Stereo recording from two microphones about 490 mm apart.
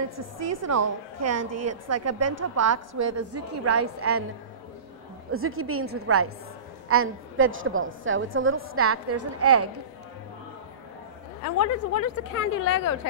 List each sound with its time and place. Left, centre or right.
0.1 s a woman's voice: right
5.3 s a woman's voice: right
11.4 s a woman's voice: left